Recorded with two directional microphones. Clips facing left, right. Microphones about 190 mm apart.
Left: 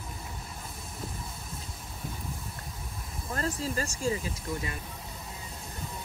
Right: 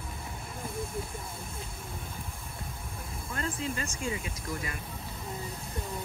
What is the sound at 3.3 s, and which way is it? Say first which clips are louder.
Speech: left 3 dB; 35° left (ahead or behind).